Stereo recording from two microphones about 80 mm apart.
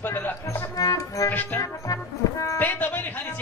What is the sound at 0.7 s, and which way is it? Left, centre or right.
Music, left.